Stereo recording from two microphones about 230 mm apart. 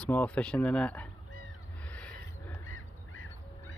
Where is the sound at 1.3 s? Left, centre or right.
Left.